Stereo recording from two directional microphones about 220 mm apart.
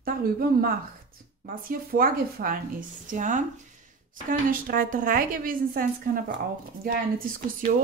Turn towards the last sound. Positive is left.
turn(degrees=-40)  # may be behind; listen again after turning